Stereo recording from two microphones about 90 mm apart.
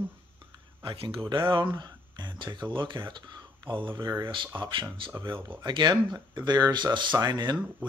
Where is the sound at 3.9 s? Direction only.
45° right (ahead or behind).